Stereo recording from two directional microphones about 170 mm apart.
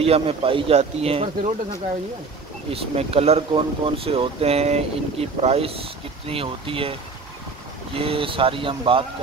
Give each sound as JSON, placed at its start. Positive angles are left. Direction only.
{"t": 0.0, "sound": "speech", "side_deg": -35}
{"t": 2.7, "sound": "speech", "side_deg": -35}